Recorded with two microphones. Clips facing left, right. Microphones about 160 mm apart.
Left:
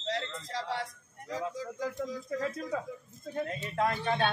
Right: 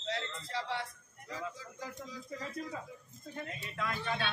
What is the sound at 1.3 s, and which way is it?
Speech, 40° left (ahead or behind).